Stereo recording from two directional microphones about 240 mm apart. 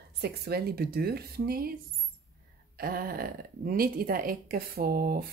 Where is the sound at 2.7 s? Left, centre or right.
Right.